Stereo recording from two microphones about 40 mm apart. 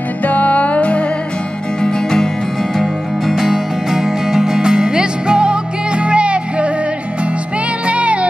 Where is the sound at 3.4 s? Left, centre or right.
Centre; by 6.7 s right.